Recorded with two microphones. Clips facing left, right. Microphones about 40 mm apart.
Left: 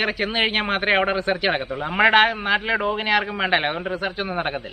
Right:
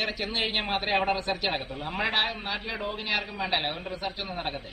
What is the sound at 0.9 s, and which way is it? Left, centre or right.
Speech, left.